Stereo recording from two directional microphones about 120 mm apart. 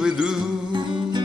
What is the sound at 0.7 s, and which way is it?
Music, 40° right (ahead or behind).